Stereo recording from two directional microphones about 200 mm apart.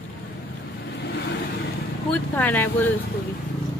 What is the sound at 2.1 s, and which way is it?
Speech, 10° left (ahead or behind).